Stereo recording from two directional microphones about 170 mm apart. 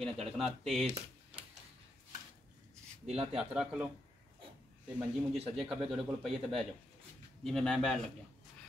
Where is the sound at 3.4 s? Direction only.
5° right (ahead or behind).